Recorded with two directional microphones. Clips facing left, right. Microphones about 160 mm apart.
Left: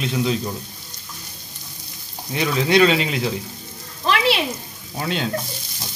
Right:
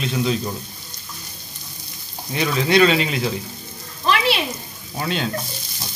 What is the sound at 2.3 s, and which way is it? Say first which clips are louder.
Frying: even; 15° left (ahead or behind).